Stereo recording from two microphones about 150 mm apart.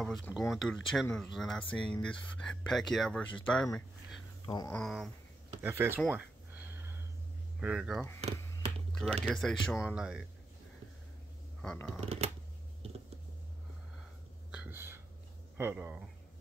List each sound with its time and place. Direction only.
0.0 s speech: 5° left (ahead or behind)
4.7 s speech: centre (ahead or behind)
5.6 s speech: 15° right (ahead or behind)
6.0 s a sound: 10° right (ahead or behind)
7.6 s speech: 5° right (ahead or behind)
8.2 s a sound: 45° right (ahead or behind)
8.9 s speech: 5° left (ahead or behind)
11.6 s speech: 5° left (ahead or behind)
14.5 s whispering: 10° right (ahead or behind)
15.5 s speech: 15° right (ahead or behind)